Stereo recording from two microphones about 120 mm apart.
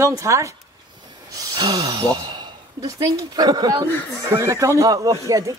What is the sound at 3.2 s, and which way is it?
Speech, 30° right (ahead or behind).